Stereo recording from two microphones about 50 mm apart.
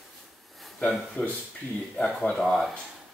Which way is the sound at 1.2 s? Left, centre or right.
Left.